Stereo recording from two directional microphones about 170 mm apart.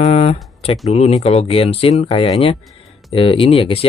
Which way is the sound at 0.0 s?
35° left (ahead or behind).